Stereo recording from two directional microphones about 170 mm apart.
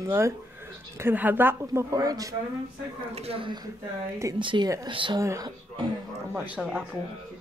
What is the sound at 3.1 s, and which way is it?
Speech, 35° right (ahead or behind).